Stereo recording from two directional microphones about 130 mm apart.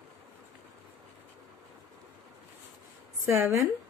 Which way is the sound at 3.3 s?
20° right (ahead or behind).